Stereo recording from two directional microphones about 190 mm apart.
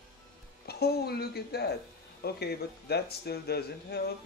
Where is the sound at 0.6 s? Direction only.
55° left (ahead or behind).